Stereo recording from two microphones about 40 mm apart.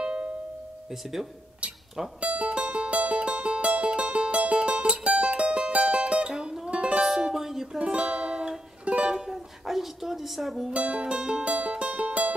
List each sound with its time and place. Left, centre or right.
0.0 s music: right
2.1 s music: right
6.3 s music: centre
7.0 s music: centre
7.8 s music: right
9.3 s speech: centre
10.9 s music: right